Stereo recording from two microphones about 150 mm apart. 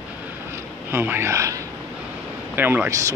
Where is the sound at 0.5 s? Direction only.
15° right (ahead or behind).